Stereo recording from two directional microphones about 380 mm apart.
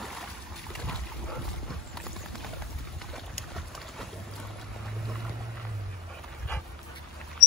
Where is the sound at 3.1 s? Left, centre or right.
Centre.